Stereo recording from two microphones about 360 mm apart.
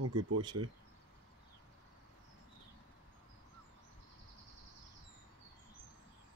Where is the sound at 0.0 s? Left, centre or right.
Right.